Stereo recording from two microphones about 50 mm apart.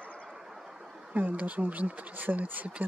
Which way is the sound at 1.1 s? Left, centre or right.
Right.